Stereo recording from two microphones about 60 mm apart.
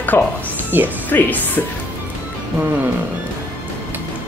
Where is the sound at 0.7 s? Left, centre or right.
Right.